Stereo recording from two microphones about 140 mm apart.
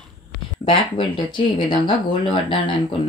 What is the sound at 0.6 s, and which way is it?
Speech, 35° left (ahead or behind).